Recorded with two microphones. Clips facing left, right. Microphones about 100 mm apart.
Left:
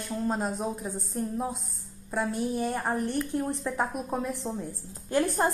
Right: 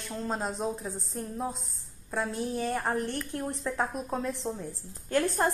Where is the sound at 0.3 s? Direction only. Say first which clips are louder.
Even; 5° left (ahead or behind).